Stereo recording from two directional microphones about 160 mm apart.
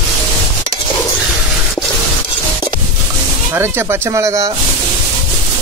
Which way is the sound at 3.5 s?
15° right (ahead or behind).